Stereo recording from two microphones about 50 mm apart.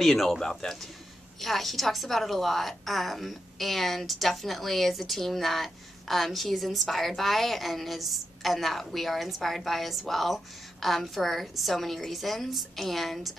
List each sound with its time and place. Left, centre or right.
0.0 s a woman's voice: centre